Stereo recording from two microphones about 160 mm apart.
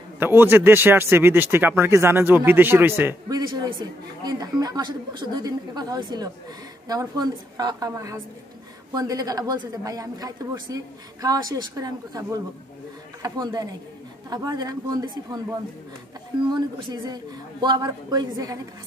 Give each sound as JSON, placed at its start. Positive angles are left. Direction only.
{"t": 0.2, "sound": "speech", "side_deg": -15}
{"t": 16.4, "sound": "speech", "side_deg": -25}